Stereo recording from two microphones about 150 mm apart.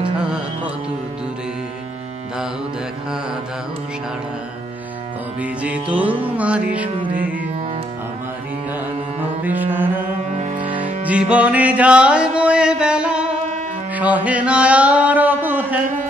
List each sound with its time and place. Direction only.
5.4 s music: 10° right (ahead or behind)
9.4 s music: 10° right (ahead or behind)
10.3 s music: 50° right (ahead or behind)
11.1 s music: 10° right (ahead or behind)
13.9 s mantra: 10° right (ahead or behind)